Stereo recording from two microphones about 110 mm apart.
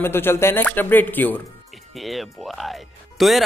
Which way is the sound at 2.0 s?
Centre (ahead or behind).